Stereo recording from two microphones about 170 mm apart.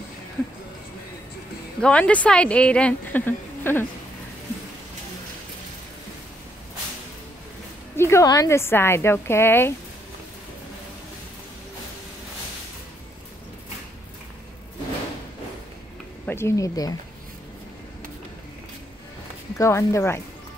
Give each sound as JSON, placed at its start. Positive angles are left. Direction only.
{"t": 1.8, "sound": "speech", "side_deg": 5}
{"t": 7.9, "sound": "speech", "side_deg": 15}
{"t": 16.3, "sound": "speech", "side_deg": 15}
{"t": 19.5, "sound": "speech", "side_deg": 15}